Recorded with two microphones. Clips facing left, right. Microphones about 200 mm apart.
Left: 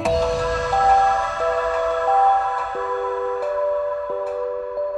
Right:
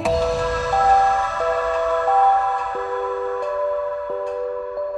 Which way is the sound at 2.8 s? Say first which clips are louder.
Left 2 dB; centre (ahead or behind).